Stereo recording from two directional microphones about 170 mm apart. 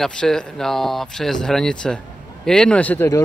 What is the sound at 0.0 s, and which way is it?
Speech, 5° left (ahead or behind).